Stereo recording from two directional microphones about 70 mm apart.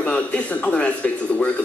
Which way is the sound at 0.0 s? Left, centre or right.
Left.